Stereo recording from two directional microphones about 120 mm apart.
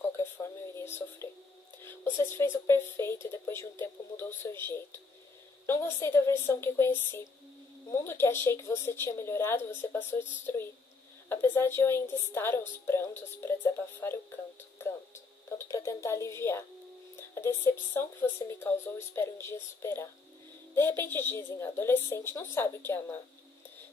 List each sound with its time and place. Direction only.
0.7 s speech: 20° left (ahead or behind)